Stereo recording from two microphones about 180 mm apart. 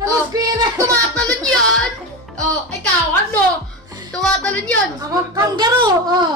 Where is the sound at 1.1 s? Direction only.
5° left (ahead or behind).